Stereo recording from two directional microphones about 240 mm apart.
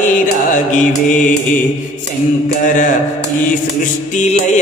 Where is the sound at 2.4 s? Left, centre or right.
Left.